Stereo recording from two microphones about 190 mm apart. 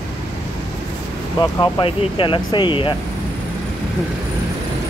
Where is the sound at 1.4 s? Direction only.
25° left (ahead or behind).